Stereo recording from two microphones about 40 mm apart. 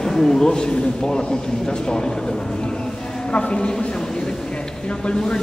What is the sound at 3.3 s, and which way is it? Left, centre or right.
Speech, left.